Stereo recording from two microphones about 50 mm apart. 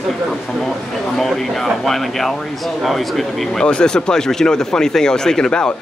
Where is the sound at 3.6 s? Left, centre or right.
Centre.